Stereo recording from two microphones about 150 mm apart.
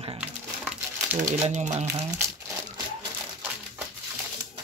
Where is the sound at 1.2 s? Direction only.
50° right (ahead or behind).